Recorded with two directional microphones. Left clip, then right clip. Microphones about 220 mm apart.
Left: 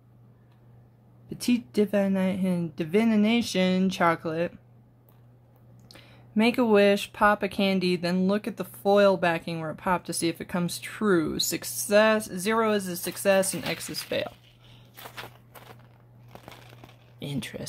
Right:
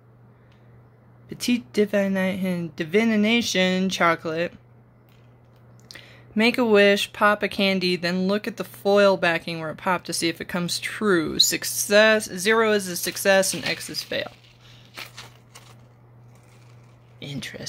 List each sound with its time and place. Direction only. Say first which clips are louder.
1.3 s speech: right 3 dB; centre (ahead or behind)
5.9 s speech: right 8 dB; centre (ahead or behind)
17.2 s speech: right 1 dB; 15° left (ahead or behind)